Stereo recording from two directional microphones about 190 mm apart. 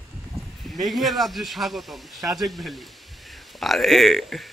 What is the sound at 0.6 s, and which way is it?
Speech, centre (ahead or behind).